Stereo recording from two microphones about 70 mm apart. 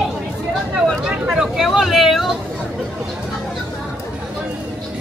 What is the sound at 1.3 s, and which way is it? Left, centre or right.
Speech, centre.